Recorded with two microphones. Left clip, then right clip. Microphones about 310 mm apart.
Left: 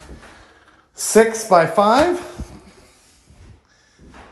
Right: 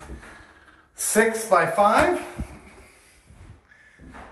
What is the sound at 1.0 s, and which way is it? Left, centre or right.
Speech, centre.